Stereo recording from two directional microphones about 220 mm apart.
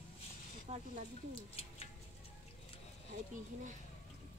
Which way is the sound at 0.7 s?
30° right (ahead or behind).